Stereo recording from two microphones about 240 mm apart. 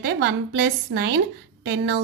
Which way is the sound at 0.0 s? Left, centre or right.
Right.